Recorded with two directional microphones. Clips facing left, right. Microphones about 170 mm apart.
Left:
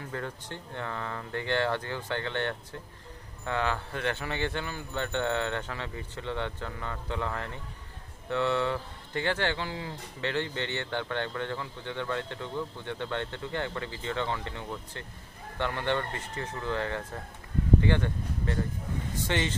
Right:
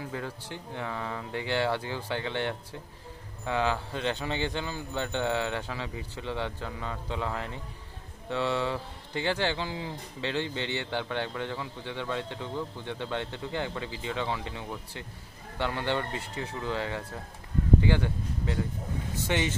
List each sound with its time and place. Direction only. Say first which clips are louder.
0.1 s speech: even; 10° right (ahead or behind)